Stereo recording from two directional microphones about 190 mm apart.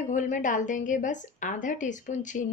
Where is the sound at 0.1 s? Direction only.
40° left (ahead or behind).